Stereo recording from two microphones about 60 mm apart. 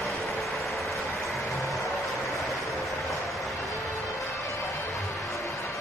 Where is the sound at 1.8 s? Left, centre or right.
Left.